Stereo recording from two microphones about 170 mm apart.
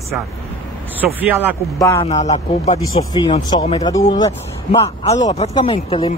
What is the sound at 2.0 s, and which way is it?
Speech, 40° left (ahead or behind).